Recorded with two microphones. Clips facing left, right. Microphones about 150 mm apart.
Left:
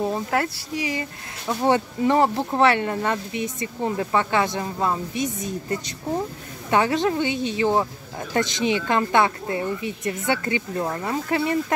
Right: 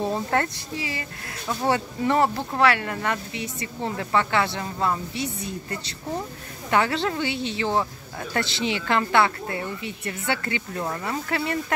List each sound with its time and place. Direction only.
0.0 s speech: 5° left (ahead or behind)